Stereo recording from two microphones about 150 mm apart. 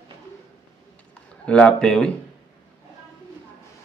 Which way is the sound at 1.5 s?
5° left (ahead or behind).